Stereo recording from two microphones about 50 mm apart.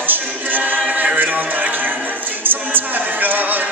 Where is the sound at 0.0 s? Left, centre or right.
Right.